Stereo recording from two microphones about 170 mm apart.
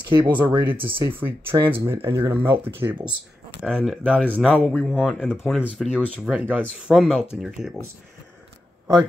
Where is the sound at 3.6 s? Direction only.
Centre (ahead or behind).